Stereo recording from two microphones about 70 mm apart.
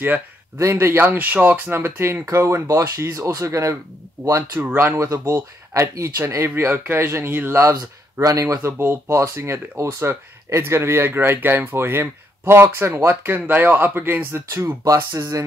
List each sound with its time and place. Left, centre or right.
0.6 s speech: right
1.7 s speech: right
4.6 s speech: right
4.9 s speech: right
7.7 s speech: right
8.7 s speech: right
14.5 s speech: right